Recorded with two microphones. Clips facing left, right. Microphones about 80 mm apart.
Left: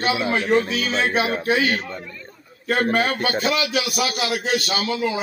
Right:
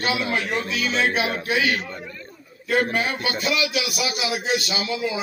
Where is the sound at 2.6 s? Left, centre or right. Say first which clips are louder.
Left 2 dB; left.